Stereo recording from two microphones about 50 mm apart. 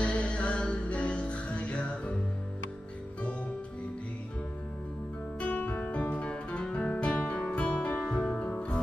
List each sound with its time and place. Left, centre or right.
0.0 s music: left
5.4 s music: left